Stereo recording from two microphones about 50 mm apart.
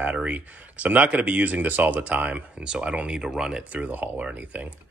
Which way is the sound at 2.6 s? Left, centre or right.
Centre.